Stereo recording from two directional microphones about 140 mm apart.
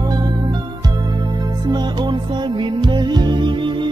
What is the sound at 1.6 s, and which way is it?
Music, 30° right (ahead or behind).